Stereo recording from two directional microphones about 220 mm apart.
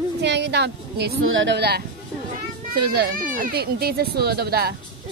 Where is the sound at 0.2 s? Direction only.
50° right (ahead or behind).